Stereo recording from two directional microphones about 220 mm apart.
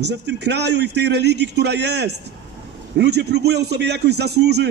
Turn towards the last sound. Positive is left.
turn(degrees=-50)  # may be behind; listen again after turning